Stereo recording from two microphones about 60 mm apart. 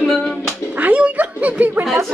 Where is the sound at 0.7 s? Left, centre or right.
Right.